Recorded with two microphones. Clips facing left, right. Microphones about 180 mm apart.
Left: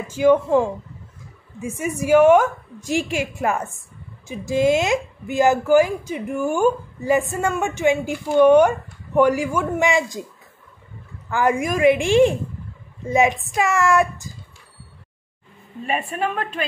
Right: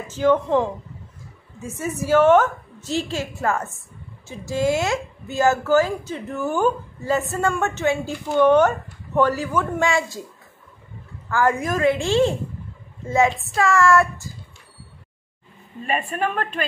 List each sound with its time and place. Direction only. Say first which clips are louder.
0.1 s a woman's voice: left 3 dB; 10° left (ahead or behind)
11.2 s a woman's voice: left 1 dB; 20° left (ahead or behind)
15.9 s speech: even; 5° left (ahead or behind)